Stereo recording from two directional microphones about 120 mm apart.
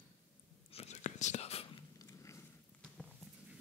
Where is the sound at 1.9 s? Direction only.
25° left (ahead or behind).